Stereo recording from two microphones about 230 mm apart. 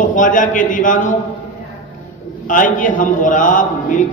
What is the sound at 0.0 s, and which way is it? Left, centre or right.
A man's voice, left.